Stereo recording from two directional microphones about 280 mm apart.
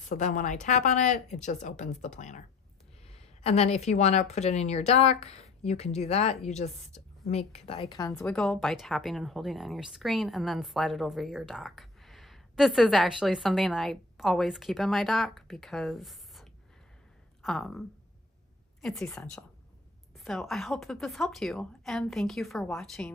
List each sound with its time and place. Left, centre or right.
0.1 s a woman's voice: left
3.4 s a woman's voice: left; by 23.1 s centre